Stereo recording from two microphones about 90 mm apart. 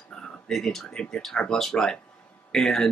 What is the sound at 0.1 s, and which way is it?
Speech, 5° left (ahead or behind).